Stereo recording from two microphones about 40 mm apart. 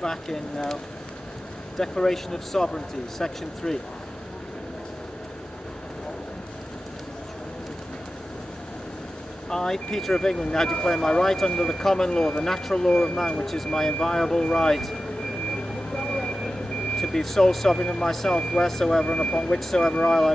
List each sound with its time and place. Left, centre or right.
0.0 s speech: centre
1.8 s speech: centre
9.5 s speech: centre
15.5 s vehicle: left
17.0 s speech: centre
17.7 s speech: left